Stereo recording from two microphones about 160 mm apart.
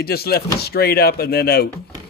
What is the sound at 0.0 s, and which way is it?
Speech, 75° left (ahead or behind).